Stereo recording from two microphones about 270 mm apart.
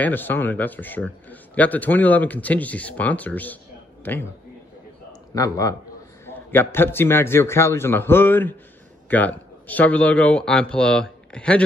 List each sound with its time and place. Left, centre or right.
0.0 s a man's voice: centre
5.3 s a man's voice: centre